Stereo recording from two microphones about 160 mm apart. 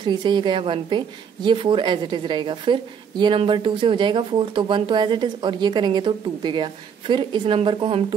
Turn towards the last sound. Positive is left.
turn(degrees=-35)  # may be behind; listen again after turning